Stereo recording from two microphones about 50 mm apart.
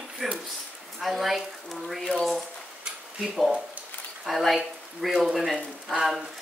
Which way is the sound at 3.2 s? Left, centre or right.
Centre.